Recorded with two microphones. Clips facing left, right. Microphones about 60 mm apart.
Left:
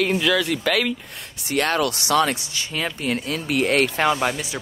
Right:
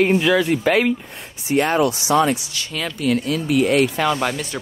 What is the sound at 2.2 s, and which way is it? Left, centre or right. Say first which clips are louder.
Speech: right 4 dB; left.